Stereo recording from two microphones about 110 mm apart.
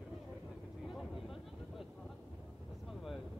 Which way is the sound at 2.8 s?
Centre (ahead or behind).